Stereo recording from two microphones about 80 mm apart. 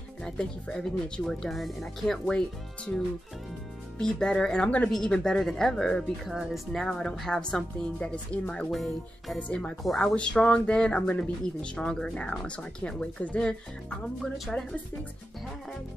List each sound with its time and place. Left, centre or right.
0.2 s speech: centre
4.0 s speech: centre
6.2 s speech: centre
6.8 s speech: centre
9.4 s speech: centre
9.8 s speech: centre
10.1 s speech: centre